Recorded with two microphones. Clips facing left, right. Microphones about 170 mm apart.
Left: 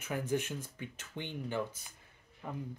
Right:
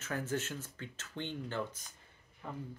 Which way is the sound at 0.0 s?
15° left (ahead or behind).